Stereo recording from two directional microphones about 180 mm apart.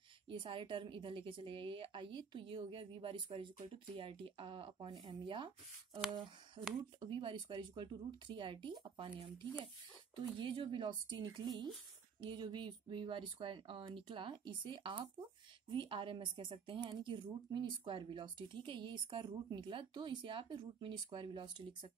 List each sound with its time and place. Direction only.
0.3 s speech: 30° right (ahead or behind)
5.9 s speech: centre (ahead or behind)
7.0 s speech: 30° right (ahead or behind)